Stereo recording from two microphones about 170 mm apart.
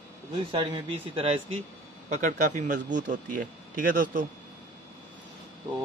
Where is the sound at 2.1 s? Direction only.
45° right (ahead or behind).